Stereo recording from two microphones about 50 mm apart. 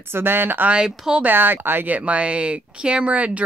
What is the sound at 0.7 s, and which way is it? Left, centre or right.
Speech, centre.